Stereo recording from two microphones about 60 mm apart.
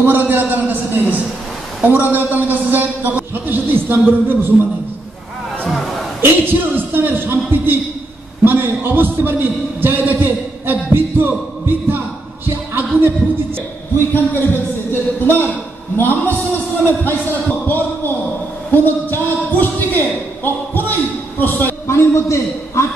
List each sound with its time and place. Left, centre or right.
0.0 s a man's voice: right
5.7 s chatter: centre
6.2 s a man's voice: right
12.4 s a sound: right
13.9 s a man's voice: left
18.7 s a sound: left
21.8 s a man's voice: left